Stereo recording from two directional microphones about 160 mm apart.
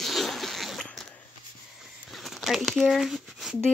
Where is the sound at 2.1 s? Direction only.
Centre (ahead or behind).